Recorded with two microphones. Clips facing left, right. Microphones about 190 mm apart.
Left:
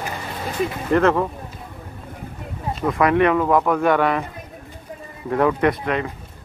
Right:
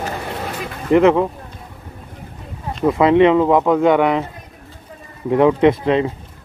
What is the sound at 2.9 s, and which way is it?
Speech, 25° right (ahead or behind).